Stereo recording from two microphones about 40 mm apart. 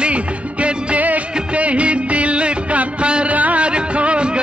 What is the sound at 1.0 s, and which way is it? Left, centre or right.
Music of bollywood, right.